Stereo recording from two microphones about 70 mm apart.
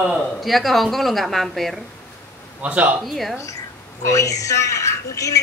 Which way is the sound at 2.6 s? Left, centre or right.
Right.